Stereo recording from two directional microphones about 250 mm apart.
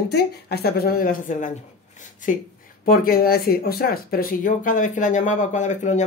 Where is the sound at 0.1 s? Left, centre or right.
Left.